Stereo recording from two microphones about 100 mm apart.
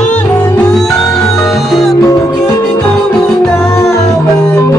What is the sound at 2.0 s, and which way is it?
Music, 35° left (ahead or behind).